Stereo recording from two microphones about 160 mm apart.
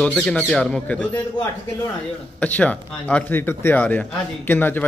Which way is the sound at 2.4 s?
10° left (ahead or behind).